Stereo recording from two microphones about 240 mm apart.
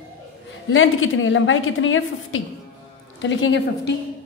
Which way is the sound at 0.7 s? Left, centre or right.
Left.